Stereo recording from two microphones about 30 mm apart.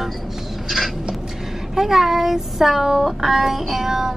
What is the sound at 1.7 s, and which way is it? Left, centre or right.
A woman's voice, centre.